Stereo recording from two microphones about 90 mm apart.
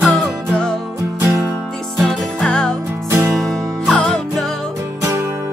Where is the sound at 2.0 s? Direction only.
5° left (ahead or behind).